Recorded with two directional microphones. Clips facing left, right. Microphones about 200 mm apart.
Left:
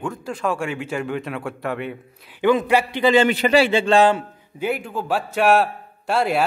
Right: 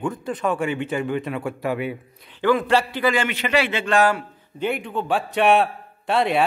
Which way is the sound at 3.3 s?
35° left (ahead or behind).